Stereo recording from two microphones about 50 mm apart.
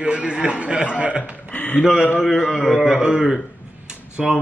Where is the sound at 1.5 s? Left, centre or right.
Left.